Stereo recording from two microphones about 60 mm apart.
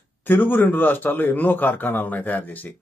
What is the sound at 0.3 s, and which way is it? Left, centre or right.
Speech, left.